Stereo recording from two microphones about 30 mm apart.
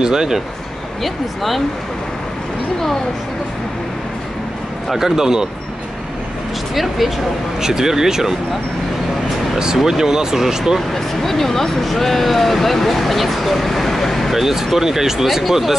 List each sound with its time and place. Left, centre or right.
0.0 s speech: right
1.0 s speech: centre
4.9 s speech: centre
6.7 s speech: centre
7.6 s speech: centre
9.8 s speech: centre
10.9 s speech: centre
14.3 s speech: centre